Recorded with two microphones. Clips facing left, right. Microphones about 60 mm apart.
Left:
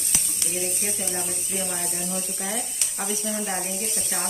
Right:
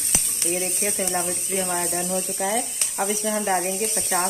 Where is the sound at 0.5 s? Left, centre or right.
Right.